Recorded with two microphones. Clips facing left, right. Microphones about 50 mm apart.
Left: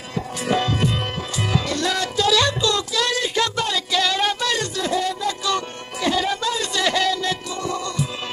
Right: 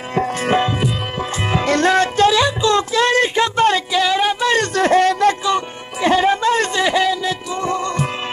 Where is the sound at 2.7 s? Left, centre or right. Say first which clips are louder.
Right 7 dB; right; by 4.5 s centre.